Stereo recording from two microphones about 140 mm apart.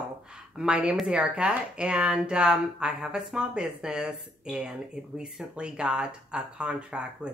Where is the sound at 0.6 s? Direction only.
5° right (ahead or behind).